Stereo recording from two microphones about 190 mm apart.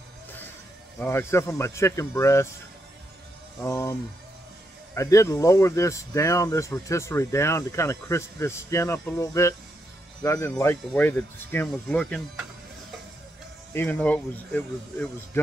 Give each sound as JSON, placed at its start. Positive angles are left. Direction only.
{"t": 0.9, "sound": "speech", "side_deg": 15}
{"t": 3.6, "sound": "speech", "side_deg": 15}
{"t": 4.9, "sound": "speech", "side_deg": 15}
{"t": 13.7, "sound": "speech", "side_deg": 10}